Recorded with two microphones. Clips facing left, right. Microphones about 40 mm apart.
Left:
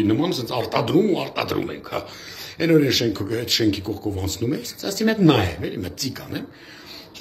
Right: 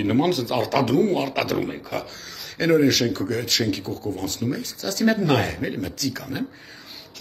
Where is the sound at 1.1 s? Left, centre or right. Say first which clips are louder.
Right 1 dB; centre.